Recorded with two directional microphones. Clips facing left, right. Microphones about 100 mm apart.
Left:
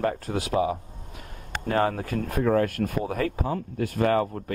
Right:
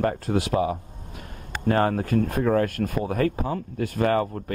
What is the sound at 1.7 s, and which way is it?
Speech, 40° right (ahead or behind).